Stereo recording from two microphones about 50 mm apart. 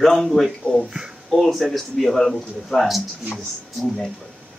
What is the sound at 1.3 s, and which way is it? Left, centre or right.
A man's voice, centre.